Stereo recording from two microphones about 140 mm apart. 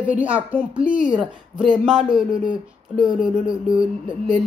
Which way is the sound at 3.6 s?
70° left (ahead or behind).